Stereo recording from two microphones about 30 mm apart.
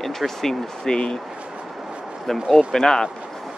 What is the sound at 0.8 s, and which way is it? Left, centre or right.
Speech, left.